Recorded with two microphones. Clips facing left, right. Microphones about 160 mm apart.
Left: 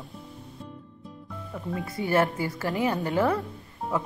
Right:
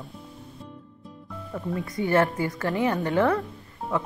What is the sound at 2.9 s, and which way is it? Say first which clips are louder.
Speech: right 2 dB; 20° left (ahead or behind).